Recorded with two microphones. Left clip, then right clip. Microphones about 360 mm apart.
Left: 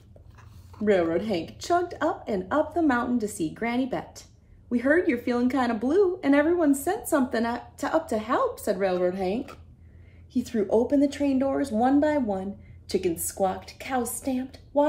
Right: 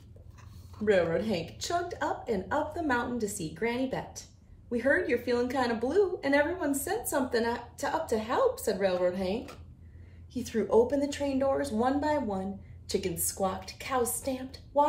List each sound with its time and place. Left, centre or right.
1.1 s a woman's voice: centre
4.8 s a woman's voice: left
5.4 s a woman's voice: centre
10.7 s a woman's voice: centre